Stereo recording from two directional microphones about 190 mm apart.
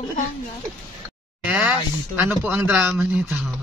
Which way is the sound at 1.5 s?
10° right (ahead or behind).